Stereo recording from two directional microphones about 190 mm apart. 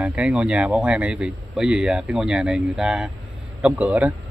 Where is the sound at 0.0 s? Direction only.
5° right (ahead or behind).